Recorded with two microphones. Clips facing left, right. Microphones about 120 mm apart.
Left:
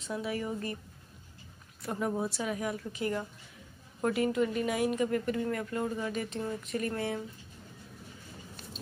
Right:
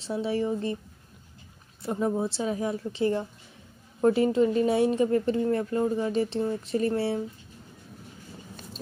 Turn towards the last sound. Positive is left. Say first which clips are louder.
# right 7 dB
turn(degrees=-30)  # may be behind; listen again after turning